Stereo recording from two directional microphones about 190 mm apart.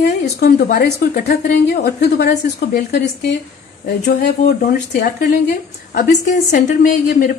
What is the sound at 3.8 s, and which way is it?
A woman's voice, 40° left (ahead or behind).